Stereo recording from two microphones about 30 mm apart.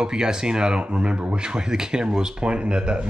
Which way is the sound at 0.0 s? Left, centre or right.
Right.